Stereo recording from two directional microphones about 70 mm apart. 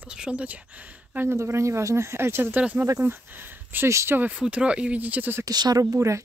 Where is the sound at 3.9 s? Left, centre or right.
Right.